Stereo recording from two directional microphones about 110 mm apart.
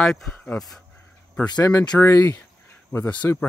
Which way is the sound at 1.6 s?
30° left (ahead or behind).